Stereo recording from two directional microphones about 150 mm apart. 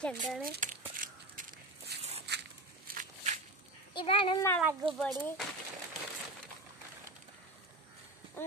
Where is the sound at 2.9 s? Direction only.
65° right (ahead or behind).